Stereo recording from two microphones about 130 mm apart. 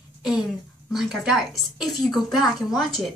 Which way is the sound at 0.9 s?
Centre (ahead or behind).